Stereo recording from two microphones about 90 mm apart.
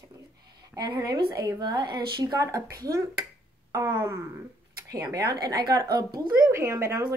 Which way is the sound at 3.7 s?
30° right (ahead or behind).